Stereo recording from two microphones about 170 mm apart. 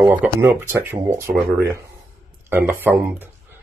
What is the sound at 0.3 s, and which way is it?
Speech, 15° right (ahead or behind).